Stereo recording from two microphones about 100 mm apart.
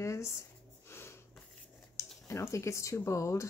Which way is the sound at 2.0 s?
30° left (ahead or behind).